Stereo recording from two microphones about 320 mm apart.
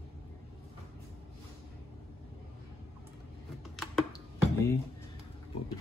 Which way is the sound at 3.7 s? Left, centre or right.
Centre.